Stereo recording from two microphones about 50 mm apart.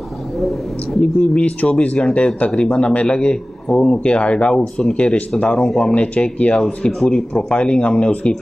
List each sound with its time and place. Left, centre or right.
0.4 s speech: centre
1.4 s a man's voice: left; by 4.0 s centre
4.0 s a man's voice: left